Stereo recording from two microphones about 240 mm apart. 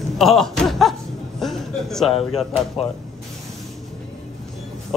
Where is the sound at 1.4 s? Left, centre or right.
Centre.